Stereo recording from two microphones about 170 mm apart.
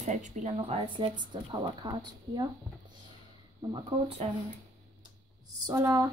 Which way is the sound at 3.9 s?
30° right (ahead or behind).